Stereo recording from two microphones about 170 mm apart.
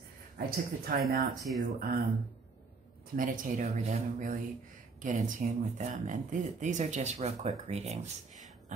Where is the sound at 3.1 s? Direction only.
55° right (ahead or behind).